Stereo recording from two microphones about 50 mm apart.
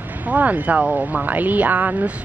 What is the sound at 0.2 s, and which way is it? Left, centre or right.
Speech, right.